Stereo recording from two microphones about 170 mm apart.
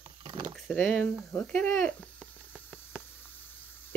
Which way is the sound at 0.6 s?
5° left (ahead or behind).